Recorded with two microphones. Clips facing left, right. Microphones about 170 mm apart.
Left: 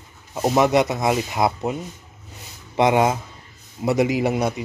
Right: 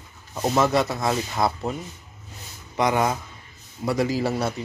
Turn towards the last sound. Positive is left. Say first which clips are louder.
# left 3 dB
turn(degrees=15)  # may be behind; listen again after turning